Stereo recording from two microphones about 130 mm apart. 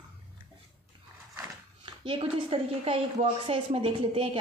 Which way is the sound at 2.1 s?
45° right (ahead or behind).